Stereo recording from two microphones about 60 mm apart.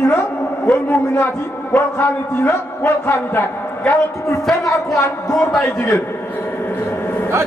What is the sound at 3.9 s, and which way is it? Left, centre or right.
Speech, left.